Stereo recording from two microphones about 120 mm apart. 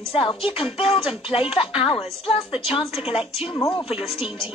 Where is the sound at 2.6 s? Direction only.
55° left (ahead or behind).